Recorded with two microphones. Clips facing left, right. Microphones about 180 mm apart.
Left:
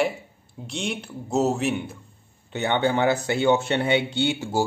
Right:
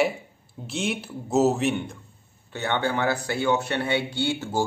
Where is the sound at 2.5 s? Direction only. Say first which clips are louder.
Left 3 dB; 20° left (ahead or behind).